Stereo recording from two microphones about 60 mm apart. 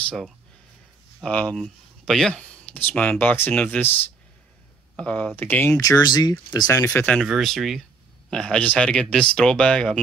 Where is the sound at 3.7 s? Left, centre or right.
Left.